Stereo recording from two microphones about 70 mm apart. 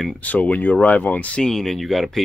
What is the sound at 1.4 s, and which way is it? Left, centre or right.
Speech, centre.